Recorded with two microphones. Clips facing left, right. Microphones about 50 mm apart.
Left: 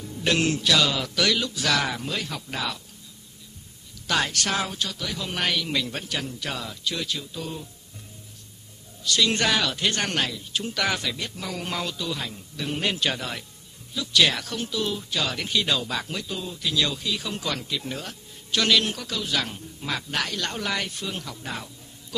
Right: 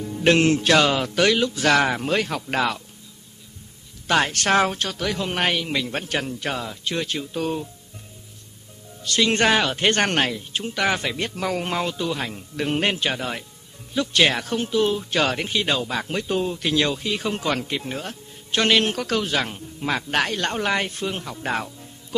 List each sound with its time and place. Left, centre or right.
0.0 s speech: right
4.1 s speech: right
5.9 s speech: right
9.0 s speech: right
10.6 s speech: right
13.0 s speech: right
13.9 s speech: right
15.3 s speech: right
16.1 s speech: right
16.8 s speech: right
17.8 s speech: right
19.3 s speech: right
20.1 s speech: right